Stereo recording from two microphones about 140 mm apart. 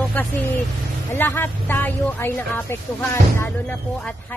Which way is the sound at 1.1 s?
15° left (ahead or behind).